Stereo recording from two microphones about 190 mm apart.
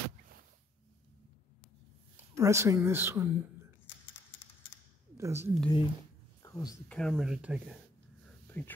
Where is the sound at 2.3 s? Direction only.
15° right (ahead or behind).